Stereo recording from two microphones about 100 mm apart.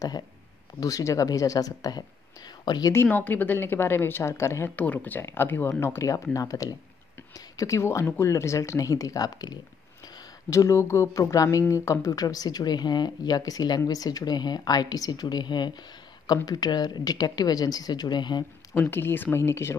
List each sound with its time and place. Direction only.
0.7 s speech: 35° left (ahead or behind)
2.9 s a woman's voice: 20° left (ahead or behind)
4.7 s a woman's voice: 15° left (ahead or behind); by 18.4 s 45° left (ahead or behind)
18.7 s a woman's voice: 25° left (ahead or behind)